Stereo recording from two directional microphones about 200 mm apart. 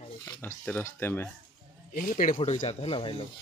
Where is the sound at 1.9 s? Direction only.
40° left (ahead or behind).